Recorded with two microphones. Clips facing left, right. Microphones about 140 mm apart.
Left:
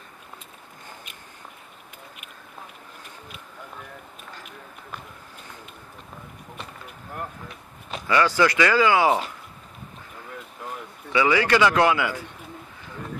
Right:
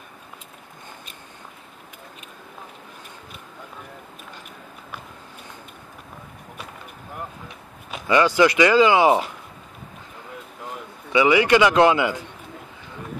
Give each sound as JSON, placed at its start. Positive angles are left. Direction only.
{"t": 8.1, "sound": "speech", "side_deg": -20}
{"t": 11.1, "sound": "speech", "side_deg": -15}